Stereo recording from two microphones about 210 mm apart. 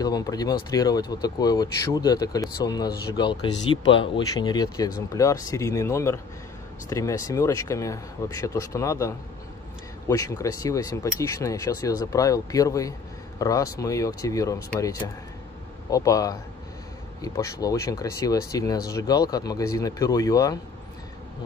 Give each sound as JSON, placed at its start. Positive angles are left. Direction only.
{"t": 0.0, "sound": "speech", "side_deg": 20}